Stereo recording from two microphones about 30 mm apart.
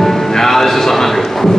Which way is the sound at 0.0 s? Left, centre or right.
Centre.